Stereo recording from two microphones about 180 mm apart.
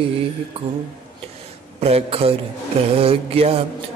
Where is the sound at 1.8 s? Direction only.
35° right (ahead or behind).